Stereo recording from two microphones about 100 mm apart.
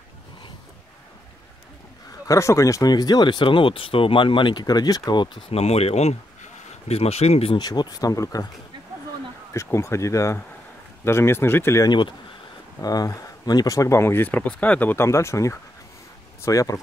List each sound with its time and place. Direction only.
2.2 s speech: 30° left (ahead or behind); by 5.4 s 50° left (ahead or behind)
5.5 s speech: 90° left
7.5 s speech: 45° left (ahead or behind)
9.5 s speech: 30° left (ahead or behind)
11.8 s speech: 50° left (ahead or behind)